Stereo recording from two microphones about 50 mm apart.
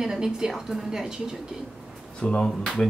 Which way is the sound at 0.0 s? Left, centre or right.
Centre.